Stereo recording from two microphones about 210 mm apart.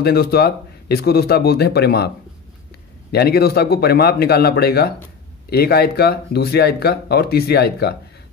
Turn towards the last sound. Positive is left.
turn(degrees=50)  # may be behind; listen again after turning